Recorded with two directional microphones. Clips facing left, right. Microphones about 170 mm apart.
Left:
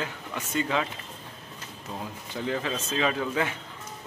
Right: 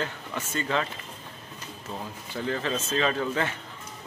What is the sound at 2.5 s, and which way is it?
Speech, 10° left (ahead or behind).